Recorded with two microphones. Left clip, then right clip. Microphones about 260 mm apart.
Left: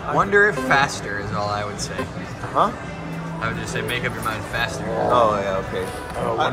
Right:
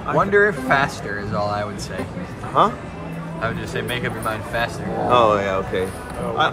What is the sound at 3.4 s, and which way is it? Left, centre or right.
Speech, centre.